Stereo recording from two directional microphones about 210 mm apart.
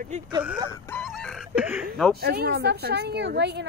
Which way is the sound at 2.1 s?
50° right (ahead or behind).